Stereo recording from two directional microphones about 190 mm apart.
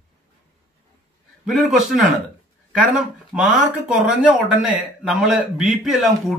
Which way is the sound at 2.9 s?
5° right (ahead or behind).